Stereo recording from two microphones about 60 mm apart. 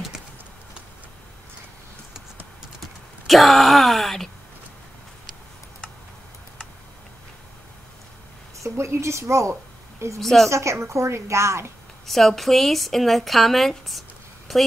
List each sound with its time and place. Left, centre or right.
3.3 s groan: centre
8.5 s speech: right
10.2 s a woman's voice: centre
10.5 s a woman's voice: right
12.1 s a woman's voice: centre